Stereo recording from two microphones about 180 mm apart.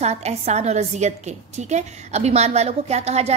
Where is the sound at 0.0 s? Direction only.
35° right (ahead or behind).